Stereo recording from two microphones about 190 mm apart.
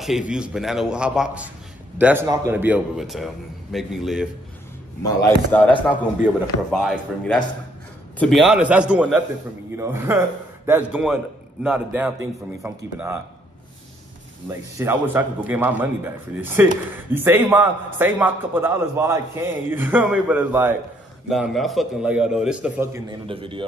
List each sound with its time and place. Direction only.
0.0 s a man's voice: 5° right (ahead or behind)
5.0 s a man's voice: 15° left (ahead or behind); by 13.2 s 10° right (ahead or behind)
14.8 s a man's voice: 10° right (ahead or behind)
23.2 s a man's voice: 25° right (ahead or behind)